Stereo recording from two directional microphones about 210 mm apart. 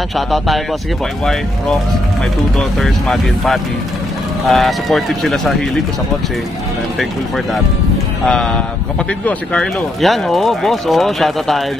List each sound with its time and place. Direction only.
2.8 s speech: centre (ahead or behind)
8.3 s speech: 5° left (ahead or behind)